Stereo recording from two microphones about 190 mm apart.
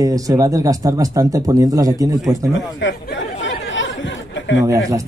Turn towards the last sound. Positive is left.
turn(degrees=-15)  # may be behind; listen again after turning